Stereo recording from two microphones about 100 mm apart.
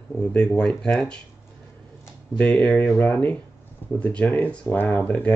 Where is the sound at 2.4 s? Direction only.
15° left (ahead or behind).